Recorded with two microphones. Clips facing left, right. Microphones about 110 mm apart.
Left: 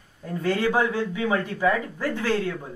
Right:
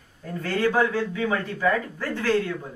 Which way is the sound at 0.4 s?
15° left (ahead or behind).